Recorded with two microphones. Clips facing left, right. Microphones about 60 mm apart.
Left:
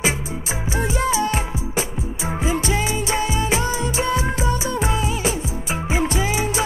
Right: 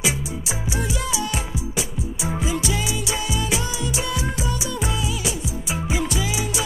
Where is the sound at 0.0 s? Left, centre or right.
Left.